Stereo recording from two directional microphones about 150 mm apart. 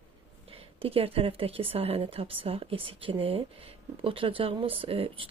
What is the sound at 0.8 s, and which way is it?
Speech, 40° right (ahead or behind).